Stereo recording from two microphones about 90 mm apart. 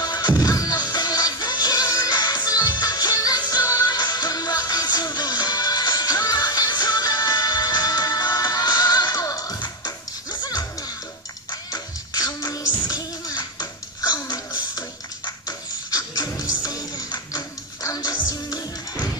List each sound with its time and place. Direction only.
0.0 s music: 50° left (ahead or behind)